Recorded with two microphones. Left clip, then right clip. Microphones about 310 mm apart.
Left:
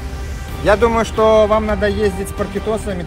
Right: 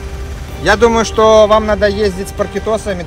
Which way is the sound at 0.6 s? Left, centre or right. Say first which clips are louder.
Right 3 dB; right.